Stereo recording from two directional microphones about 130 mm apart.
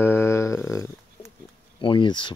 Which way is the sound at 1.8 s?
35° left (ahead or behind).